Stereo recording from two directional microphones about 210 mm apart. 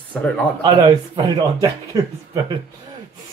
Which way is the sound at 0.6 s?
20° right (ahead or behind).